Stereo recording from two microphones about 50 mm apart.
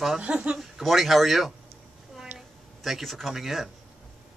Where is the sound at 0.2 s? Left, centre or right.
Right.